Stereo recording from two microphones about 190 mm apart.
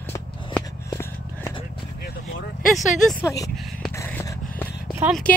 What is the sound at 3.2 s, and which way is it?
Speech, 15° left (ahead or behind).